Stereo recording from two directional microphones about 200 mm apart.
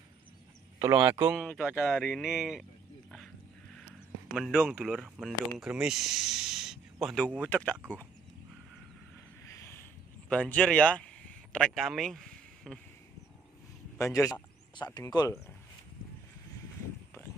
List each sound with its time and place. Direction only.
0.7 s speech: 15° right (ahead or behind)
4.3 s speech: 5° right (ahead or behind)
7.4 s a man's voice: 10° left (ahead or behind)
7.8 s speech: 15° right (ahead or behind)
9.6 s a sound: 10° left (ahead or behind)
10.3 s speech: 5° left (ahead or behind)
13.9 s a man's voice: 15° left (ahead or behind)